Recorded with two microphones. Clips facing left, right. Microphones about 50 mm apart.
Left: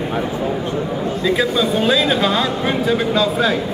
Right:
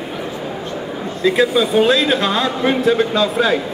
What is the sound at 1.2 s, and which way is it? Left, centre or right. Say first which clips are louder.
Speech: right 4 dB; centre.